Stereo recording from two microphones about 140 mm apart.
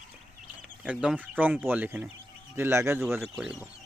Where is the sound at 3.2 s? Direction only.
5° right (ahead or behind).